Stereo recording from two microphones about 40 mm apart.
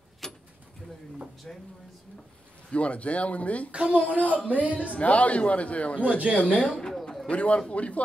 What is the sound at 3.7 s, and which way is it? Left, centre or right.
Speech, right.